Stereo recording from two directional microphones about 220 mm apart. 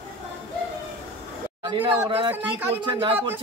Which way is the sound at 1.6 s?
20° right (ahead or behind).